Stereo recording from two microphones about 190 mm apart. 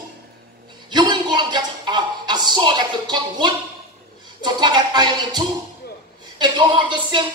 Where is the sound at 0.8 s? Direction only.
25° right (ahead or behind).